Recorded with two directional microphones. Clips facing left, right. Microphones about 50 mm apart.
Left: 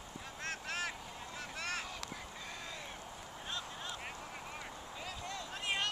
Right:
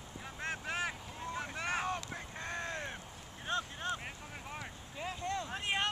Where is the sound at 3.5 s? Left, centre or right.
Right.